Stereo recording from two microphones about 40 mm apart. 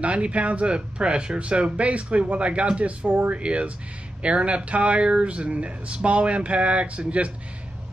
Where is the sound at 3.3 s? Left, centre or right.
Right.